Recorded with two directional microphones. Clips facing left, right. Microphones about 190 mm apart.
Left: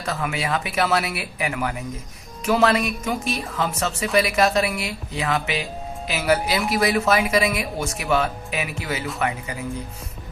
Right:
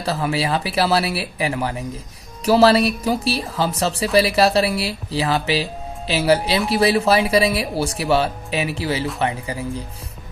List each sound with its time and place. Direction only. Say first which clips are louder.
0.0 s speech: right 5 dB; 30° right (ahead or behind)